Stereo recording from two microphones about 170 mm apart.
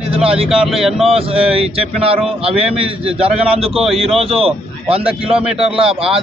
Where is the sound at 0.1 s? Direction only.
35° right (ahead or behind).